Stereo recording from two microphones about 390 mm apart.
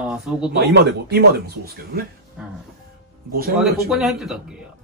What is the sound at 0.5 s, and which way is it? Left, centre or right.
Speech, right.